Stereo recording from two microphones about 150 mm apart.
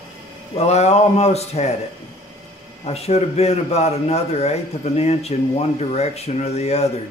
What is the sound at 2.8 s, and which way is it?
A man's voice, 45° left (ahead or behind).